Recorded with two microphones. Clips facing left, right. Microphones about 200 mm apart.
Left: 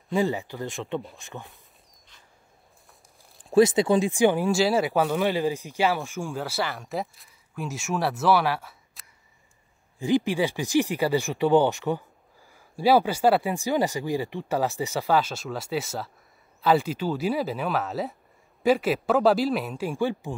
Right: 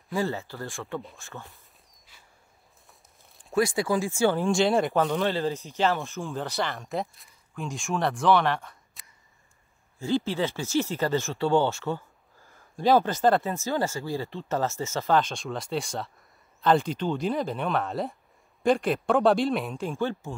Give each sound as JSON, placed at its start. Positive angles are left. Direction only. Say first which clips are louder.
{"t": 0.1, "sound": "speech", "louder": "left 4 dB", "side_deg": 15}
{"t": 3.5, "sound": "speech", "louder": "left 6 dB", "side_deg": 20}
{"t": 4.5, "sound": "speech", "louder": "even", "side_deg": 5}
{"t": 9.9, "sound": "speech", "louder": "left 3 dB", "side_deg": 15}
{"t": 19.9, "sound": "speech", "louder": "left 4 dB", "side_deg": 15}